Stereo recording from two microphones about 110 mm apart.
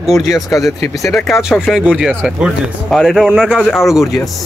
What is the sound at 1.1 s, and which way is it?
Speech, centre (ahead or behind).